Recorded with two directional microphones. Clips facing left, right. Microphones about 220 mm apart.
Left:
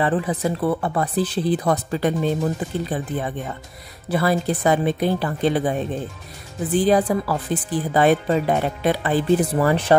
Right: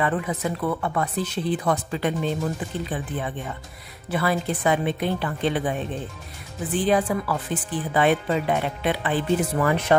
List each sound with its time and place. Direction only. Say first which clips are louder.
0.0 s speech: left 4 dB; 30° left (ahead or behind)